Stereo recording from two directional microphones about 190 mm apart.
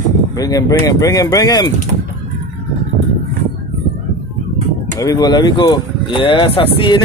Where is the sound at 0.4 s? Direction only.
20° left (ahead or behind).